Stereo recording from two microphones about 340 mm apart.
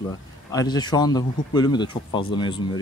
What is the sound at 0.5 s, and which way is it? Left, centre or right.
Speech, centre.